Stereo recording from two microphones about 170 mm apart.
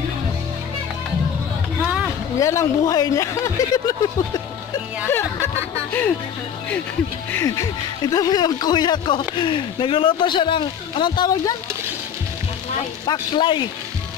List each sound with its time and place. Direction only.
1.8 s a sound: 5° right (ahead or behind)
2.3 s speech: 20° left (ahead or behind)
7.3 s speech: 20° left (ahead or behind)
13.0 s speech: 25° left (ahead or behind)